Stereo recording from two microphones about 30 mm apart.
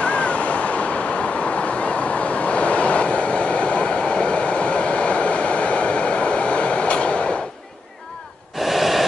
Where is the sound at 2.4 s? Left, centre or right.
Left.